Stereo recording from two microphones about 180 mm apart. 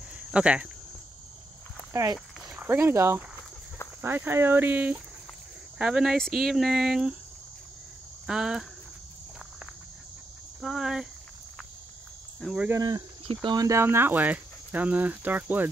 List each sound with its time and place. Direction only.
0.1 s cricket: 5° right (ahead or behind)
1.9 s speech: 15° right (ahead or behind)
8.3 s speech: 5° right (ahead or behind)
10.6 s speech: 5° right (ahead or behind)
12.4 s speech: centre (ahead or behind)
12.6 s speech: 20° right (ahead or behind)